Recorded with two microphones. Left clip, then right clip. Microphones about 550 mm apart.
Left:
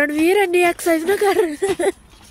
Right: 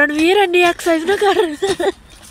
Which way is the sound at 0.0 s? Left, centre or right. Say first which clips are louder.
Right 3 dB; left.